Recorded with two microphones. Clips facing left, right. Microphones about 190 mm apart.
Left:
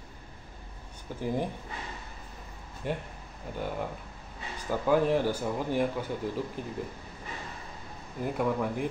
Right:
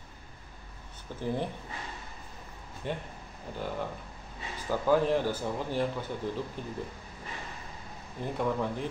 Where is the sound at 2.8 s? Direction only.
10° left (ahead or behind).